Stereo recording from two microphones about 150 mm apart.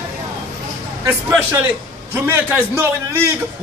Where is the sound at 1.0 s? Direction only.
15° right (ahead or behind).